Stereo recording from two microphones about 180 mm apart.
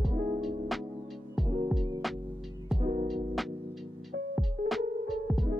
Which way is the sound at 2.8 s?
40° right (ahead or behind).